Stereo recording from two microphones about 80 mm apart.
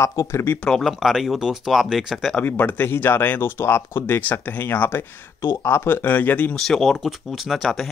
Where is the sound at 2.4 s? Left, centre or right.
Left.